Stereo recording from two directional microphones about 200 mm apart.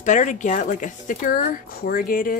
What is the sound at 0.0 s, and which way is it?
Speech, 40° left (ahead or behind).